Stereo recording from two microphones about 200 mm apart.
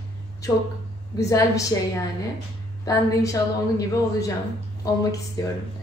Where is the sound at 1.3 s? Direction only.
15° left (ahead or behind).